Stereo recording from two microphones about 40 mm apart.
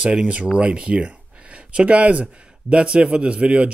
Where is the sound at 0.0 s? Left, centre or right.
Right.